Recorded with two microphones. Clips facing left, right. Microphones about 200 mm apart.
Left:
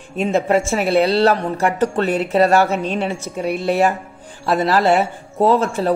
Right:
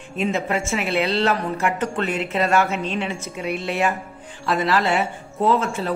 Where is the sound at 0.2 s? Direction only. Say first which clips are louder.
Left 6 dB; 40° left (ahead or behind).